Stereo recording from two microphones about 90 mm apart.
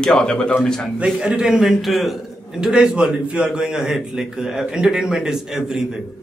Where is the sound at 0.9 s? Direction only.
10° right (ahead or behind).